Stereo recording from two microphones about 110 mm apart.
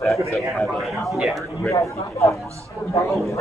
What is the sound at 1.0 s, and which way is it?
Speech, 5° right (ahead or behind).